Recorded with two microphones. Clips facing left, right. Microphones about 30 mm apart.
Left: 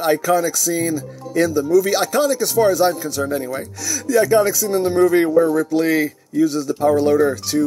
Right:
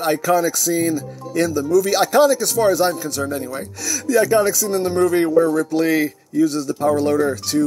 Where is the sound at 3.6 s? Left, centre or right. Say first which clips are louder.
Even; centre.